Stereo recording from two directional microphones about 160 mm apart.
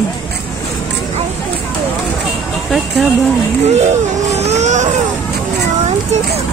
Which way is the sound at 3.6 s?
40° right (ahead or behind).